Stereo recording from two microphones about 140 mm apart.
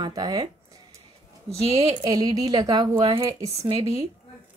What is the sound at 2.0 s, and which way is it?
A woman's voice, 25° right (ahead or behind).